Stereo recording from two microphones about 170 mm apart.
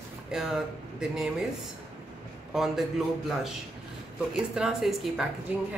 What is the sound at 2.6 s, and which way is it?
Speech, centre (ahead or behind).